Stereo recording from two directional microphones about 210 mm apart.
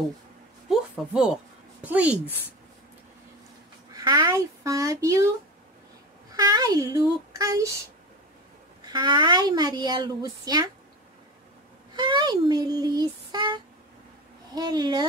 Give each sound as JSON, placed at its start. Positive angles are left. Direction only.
{"t": 0.7, "sound": "a sound", "side_deg": -5}
{"t": 1.8, "sound": "speech", "side_deg": -5}
{"t": 3.9, "sound": "speech", "side_deg": -20}
{"t": 6.3, "sound": "speech", "side_deg": -20}
{"t": 8.8, "sound": "a woman's voice", "side_deg": -20}
{"t": 11.9, "sound": "a woman's voice", "side_deg": -20}